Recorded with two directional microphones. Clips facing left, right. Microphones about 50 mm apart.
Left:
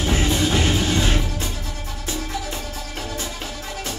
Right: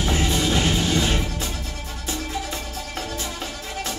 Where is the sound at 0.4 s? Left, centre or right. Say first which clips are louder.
Left 1 dB; left.